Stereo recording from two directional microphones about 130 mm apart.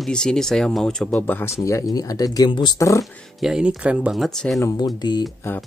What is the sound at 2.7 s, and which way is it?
Speech, 25° left (ahead or behind).